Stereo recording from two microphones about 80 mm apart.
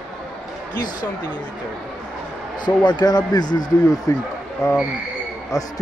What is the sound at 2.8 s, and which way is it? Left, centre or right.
Speech, left.